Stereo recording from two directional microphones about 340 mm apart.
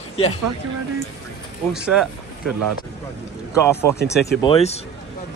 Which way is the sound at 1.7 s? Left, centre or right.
Centre.